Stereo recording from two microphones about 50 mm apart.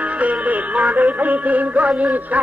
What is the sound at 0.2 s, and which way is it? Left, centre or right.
Music, right.